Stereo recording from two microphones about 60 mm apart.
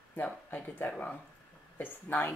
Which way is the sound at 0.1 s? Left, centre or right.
Left.